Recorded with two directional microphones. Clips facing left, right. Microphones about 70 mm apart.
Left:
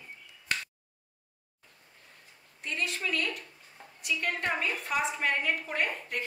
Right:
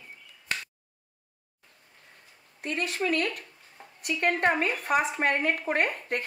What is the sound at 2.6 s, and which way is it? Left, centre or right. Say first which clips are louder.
Speech: right 5 dB; right.